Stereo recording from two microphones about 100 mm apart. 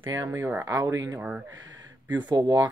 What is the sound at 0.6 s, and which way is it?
Speech, 35° right (ahead or behind).